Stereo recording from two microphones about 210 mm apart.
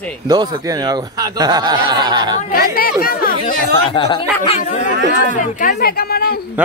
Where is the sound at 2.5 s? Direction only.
45° left (ahead or behind).